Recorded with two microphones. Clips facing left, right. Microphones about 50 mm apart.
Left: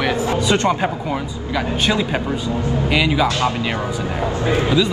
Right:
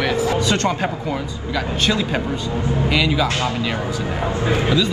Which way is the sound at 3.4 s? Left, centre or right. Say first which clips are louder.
Left 2 dB; left.